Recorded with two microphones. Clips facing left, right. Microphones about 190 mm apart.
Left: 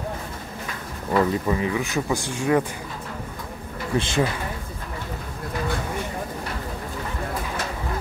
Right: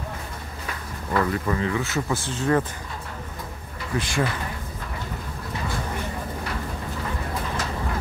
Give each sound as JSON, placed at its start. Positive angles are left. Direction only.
{"t": 1.1, "sound": "speech", "side_deg": 15}
{"t": 4.0, "sound": "speech", "side_deg": 25}